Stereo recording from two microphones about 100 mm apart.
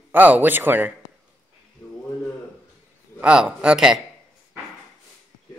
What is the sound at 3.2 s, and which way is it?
Speech, 10° right (ahead or behind).